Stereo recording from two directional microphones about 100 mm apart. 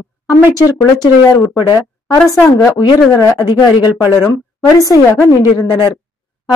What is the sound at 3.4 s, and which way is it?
A woman's voice, 45° left (ahead or behind).